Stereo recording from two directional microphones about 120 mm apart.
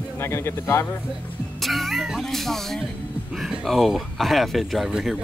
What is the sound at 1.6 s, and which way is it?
Speech, centre (ahead or behind).